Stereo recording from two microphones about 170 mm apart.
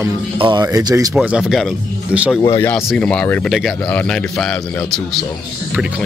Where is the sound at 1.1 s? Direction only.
5° right (ahead or behind).